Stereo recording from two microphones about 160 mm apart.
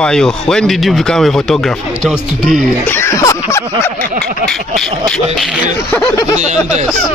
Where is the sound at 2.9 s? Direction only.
15° left (ahead or behind).